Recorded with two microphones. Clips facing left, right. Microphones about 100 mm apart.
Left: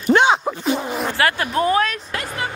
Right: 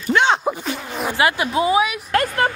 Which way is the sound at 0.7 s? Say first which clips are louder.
Left 6 dB; 20° left (ahead or behind).